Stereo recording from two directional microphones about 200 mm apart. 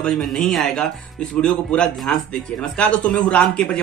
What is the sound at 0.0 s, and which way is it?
A man's voice, centre (ahead or behind).